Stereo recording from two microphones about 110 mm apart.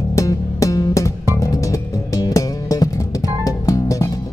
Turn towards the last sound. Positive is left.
turn(degrees=30)  # may be behind; listen again after turning